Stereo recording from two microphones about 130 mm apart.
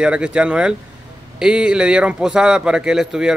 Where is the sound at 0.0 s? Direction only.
10° right (ahead or behind).